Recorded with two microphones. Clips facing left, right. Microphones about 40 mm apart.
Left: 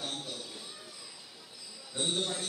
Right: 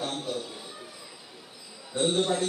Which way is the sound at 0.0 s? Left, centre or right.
Centre.